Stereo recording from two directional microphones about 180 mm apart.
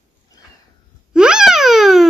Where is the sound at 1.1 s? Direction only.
5° right (ahead or behind).